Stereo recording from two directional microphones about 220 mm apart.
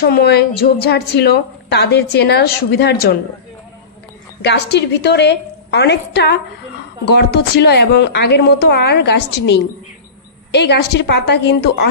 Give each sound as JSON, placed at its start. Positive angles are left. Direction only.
{"t": 0.0, "sound": "a woman's voice", "side_deg": 45}
{"t": 4.4, "sound": "a woman's voice", "side_deg": 50}